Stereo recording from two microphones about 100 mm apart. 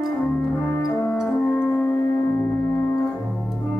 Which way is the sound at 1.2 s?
20° left (ahead or behind).